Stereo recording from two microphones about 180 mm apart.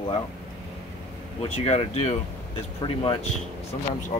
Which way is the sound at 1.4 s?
35° left (ahead or behind).